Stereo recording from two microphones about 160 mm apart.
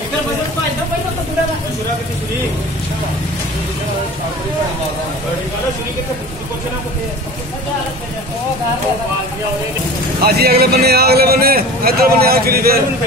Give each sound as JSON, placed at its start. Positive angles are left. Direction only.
{"t": 10.2, "sound": "a man's voice", "side_deg": -75}